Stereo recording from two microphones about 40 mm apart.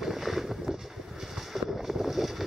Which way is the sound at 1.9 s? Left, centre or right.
Centre.